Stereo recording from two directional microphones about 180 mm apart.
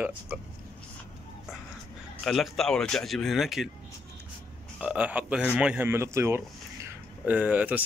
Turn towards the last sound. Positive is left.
turn(degrees=-10)  # may be behind; listen again after turning